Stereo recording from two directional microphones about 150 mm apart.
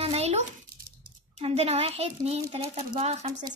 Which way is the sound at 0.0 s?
40° right (ahead or behind).